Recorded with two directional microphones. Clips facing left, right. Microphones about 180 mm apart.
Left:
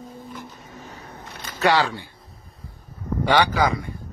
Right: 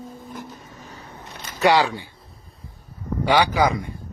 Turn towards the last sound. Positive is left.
turn(degrees=-15)  # may be behind; listen again after turning